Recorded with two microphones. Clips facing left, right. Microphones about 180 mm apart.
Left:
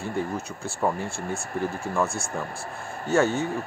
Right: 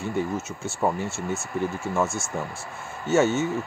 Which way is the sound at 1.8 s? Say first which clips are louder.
Even; centre (ahead or behind).